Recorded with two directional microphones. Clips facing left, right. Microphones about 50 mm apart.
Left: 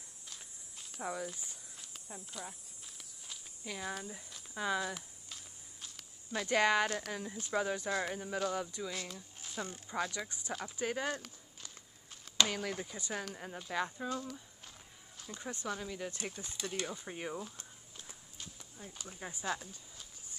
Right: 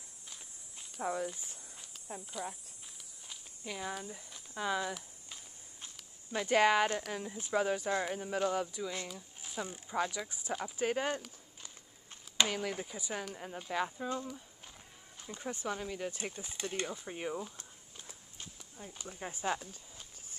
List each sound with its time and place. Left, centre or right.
1.0 s speech: centre
3.3 s a sound: centre
4.6 s speech: centre
6.3 s speech: centre
7.0 s speech: centre; by 8.0 s right
8.0 s speech: centre
9.0 s speech: centre
10.8 s speech: right
12.4 s speech: centre
14.0 s speech: right
16.5 s speech: right
16.8 s speech: centre
18.8 s speech: centre